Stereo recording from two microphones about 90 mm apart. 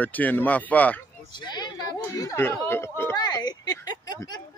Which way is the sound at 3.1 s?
50° left (ahead or behind).